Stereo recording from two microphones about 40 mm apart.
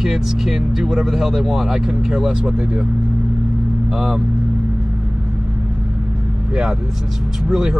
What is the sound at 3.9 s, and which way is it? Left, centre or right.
Speech, centre.